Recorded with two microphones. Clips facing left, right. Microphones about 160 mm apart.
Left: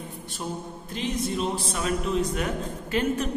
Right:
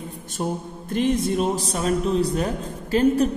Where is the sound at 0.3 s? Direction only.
50° right (ahead or behind).